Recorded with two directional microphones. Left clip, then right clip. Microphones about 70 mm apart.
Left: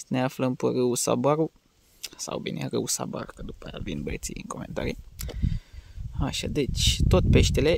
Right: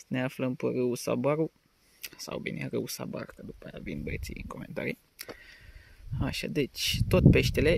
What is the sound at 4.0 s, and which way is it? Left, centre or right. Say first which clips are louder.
Speech: left 4 dB; left.